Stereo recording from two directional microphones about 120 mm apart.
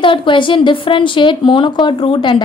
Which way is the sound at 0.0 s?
45° left (ahead or behind).